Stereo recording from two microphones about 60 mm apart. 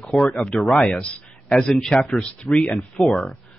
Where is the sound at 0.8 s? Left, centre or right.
Centre.